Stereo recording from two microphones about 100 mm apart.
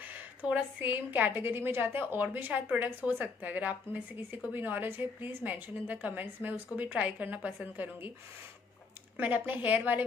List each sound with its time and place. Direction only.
0.0 s a woman's voice: 15° right (ahead or behind)
9.1 s a woman's voice: 15° right (ahead or behind)